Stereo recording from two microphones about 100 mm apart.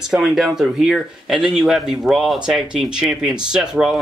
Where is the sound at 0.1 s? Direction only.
5° right (ahead or behind).